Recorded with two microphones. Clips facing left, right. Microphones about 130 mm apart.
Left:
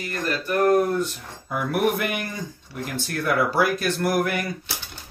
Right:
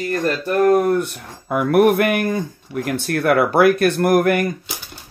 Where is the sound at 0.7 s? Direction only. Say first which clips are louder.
Right 4 dB; 60° right (ahead or behind).